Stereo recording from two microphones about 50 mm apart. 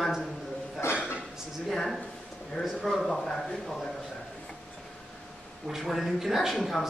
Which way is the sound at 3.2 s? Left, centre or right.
Centre.